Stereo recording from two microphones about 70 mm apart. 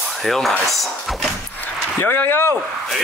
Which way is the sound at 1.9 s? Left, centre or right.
Left.